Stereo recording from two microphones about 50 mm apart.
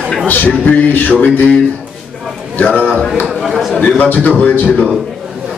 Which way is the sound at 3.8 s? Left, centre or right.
Left.